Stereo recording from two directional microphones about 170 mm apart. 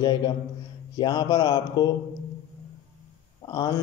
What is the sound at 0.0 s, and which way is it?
A man's voice, 25° left (ahead or behind).